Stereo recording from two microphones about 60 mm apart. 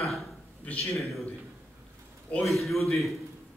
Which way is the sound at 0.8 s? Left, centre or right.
Centre.